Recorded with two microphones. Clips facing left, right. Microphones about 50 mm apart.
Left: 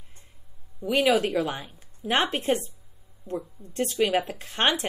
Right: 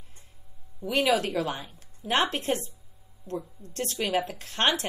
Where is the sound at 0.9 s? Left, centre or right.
Left.